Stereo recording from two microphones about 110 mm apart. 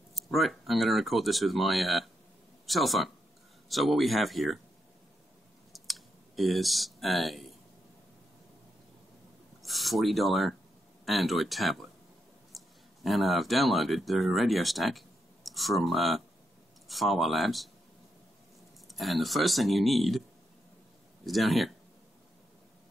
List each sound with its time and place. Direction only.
0.1 s speech: centre (ahead or behind)
5.7 s clicking: centre (ahead or behind)
9.6 s a sound: centre (ahead or behind)
11.1 s speech: centre (ahead or behind)
18.9 s speech: centre (ahead or behind)
21.3 s speech: centre (ahead or behind)